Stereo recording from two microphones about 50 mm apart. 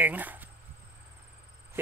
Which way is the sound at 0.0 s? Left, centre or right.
Right.